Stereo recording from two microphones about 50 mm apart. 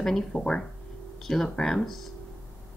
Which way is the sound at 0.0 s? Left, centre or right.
Centre.